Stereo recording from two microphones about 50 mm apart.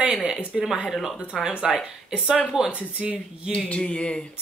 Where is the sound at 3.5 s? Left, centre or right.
Left.